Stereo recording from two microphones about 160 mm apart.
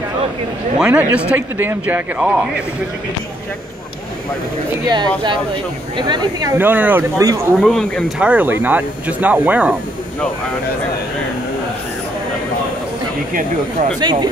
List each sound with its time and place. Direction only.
0.7 s speech: 5° right (ahead or behind)
5.9 s speech: 25° right (ahead or behind)
6.6 s speech: 10° right (ahead or behind)
7.5 s speech: centre (ahead or behind)
8.3 s speech: 10° right (ahead or behind)
13.3 s speech: 55° right (ahead or behind)
13.9 s speech: 25° right (ahead or behind)